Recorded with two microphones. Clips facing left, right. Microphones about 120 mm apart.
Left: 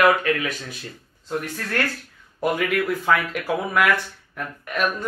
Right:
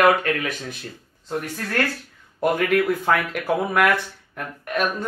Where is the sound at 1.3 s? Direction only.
35° right (ahead or behind).